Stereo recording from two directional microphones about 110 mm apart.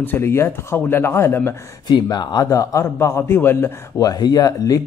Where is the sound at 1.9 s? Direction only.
40° left (ahead or behind); by 3.7 s 20° left (ahead or behind).